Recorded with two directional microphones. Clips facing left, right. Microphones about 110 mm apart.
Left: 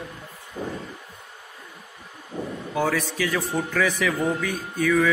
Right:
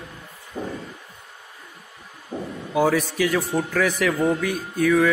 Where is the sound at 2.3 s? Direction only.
60° right (ahead or behind).